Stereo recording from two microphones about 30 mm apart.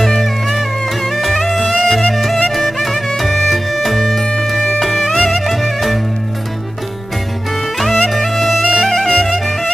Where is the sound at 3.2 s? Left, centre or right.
Centre.